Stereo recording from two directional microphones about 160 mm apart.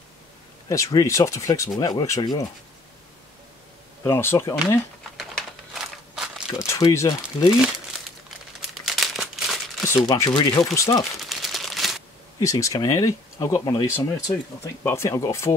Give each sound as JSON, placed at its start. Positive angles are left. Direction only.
{"t": 0.7, "sound": "speech", "side_deg": 20}
{"t": 4.0, "sound": "speech", "side_deg": 15}
{"t": 5.8, "sound": "a sound", "side_deg": -5}
{"t": 6.6, "sound": "speech", "side_deg": 20}
{"t": 8.5, "sound": "crumpling", "side_deg": 0}
{"t": 9.9, "sound": "speech", "side_deg": 25}
{"t": 11.2, "sound": "crumpling", "side_deg": 0}
{"t": 12.4, "sound": "speech", "side_deg": 20}